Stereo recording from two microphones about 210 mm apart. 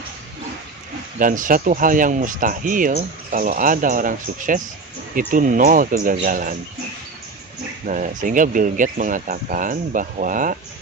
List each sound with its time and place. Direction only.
1.2 s speech: 40° right (ahead or behind)
7.8 s speech: 35° right (ahead or behind)